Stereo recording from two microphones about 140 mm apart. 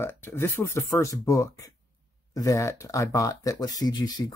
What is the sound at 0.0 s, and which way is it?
Speech, 15° left (ahead or behind).